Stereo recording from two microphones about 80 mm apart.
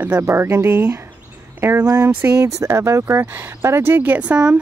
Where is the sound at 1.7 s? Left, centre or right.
Right.